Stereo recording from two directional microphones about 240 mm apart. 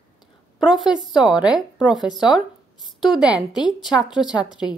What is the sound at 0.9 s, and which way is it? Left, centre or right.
Speech, centre.